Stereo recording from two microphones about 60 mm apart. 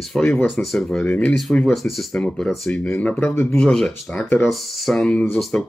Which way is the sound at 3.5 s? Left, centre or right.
Centre.